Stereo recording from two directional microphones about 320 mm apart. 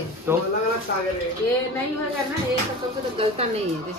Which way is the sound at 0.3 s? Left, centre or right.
Centre.